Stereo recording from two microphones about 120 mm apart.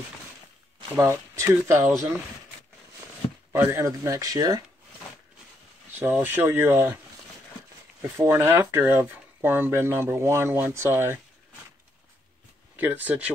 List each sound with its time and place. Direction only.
0.9 s speech: 25° right (ahead or behind)
3.5 s speech: 20° right (ahead or behind)
5.9 s a sound: 20° right (ahead or behind)
6.2 s speech: 15° right (ahead or behind)
8.2 s speech: 20° right (ahead or behind)
12.7 s speech: 15° right (ahead or behind)